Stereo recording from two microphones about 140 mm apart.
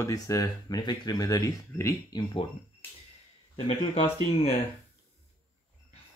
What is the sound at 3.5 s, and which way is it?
Speech, 40° left (ahead or behind).